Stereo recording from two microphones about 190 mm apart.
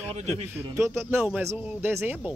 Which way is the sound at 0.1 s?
35° right (ahead or behind).